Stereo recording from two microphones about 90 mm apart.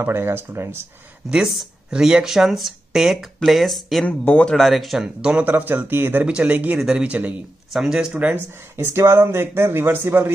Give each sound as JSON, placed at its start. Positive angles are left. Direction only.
{"t": 0.0, "sound": "speech", "side_deg": -25}
{"t": 1.3, "sound": "speech", "side_deg": -10}
{"t": 4.0, "sound": "speech", "side_deg": 15}
{"t": 4.6, "sound": "speech", "side_deg": 0}
{"t": 8.7, "sound": "speech", "side_deg": -30}